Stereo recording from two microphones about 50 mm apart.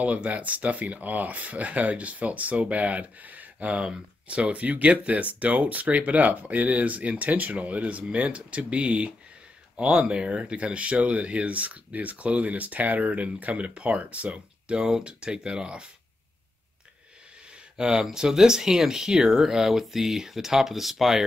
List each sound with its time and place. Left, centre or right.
0.0 s speech: right
17.5 s speech: centre